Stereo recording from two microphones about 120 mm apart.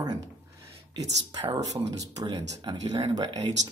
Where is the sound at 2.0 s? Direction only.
30° right (ahead or behind).